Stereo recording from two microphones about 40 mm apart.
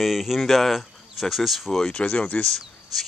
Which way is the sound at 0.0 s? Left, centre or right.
Centre.